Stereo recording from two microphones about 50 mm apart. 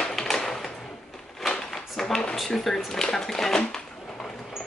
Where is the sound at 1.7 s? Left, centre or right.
Centre.